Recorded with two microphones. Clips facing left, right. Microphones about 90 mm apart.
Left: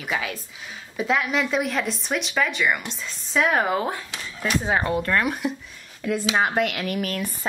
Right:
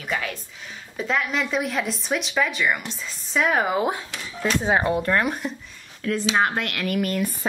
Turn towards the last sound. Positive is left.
turn(degrees=0)  # may be behind; listen again after turning